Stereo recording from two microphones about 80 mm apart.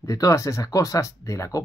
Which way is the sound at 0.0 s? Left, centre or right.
Left.